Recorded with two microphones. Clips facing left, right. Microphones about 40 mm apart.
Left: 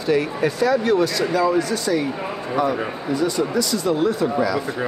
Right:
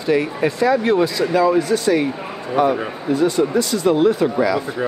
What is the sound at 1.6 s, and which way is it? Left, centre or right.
Speech, right.